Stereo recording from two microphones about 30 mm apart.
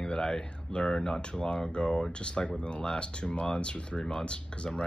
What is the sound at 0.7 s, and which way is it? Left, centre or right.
Speech, left.